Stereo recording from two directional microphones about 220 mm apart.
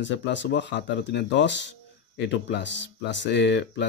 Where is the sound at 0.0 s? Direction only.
55° left (ahead or behind).